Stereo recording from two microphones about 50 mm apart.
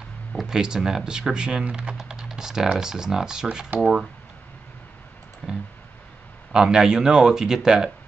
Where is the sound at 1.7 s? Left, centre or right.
Centre.